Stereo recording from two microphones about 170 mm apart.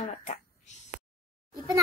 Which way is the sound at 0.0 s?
45° left (ahead or behind).